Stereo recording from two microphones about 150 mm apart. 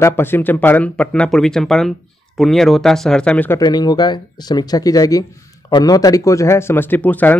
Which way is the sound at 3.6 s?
25° left (ahead or behind).